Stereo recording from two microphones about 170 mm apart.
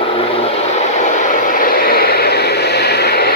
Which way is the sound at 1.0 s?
50° left (ahead or behind).